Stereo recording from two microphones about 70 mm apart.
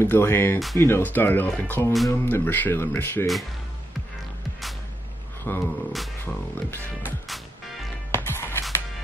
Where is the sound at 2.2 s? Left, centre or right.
Left.